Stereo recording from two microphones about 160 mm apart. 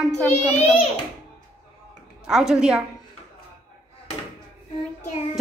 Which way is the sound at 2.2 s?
5° right (ahead or behind).